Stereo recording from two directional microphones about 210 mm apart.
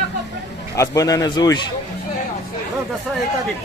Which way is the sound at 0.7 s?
15° left (ahead or behind).